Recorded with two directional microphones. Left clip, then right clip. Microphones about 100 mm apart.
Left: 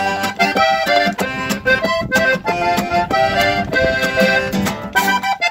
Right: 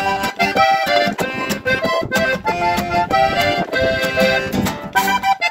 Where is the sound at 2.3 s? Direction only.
20° right (ahead or behind).